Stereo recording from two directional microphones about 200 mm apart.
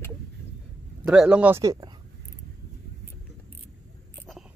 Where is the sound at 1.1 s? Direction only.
5° right (ahead or behind).